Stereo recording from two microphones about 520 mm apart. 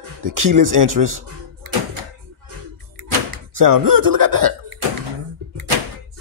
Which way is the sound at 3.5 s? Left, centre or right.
Right.